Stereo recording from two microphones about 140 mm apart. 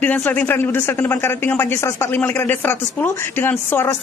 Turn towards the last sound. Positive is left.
turn(degrees=15)  # may be behind; listen again after turning